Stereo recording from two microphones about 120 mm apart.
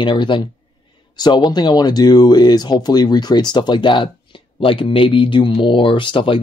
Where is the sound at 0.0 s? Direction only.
40° left (ahead or behind).